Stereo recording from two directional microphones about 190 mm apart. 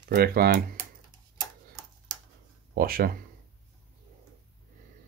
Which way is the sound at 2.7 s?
50° right (ahead or behind).